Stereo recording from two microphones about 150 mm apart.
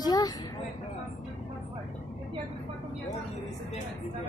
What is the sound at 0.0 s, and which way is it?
Vehicle, 25° left (ahead or behind).